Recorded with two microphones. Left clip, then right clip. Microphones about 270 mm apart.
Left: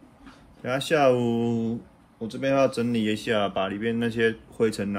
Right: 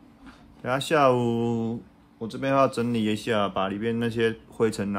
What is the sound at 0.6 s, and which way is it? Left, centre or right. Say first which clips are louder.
Speech: even; centre.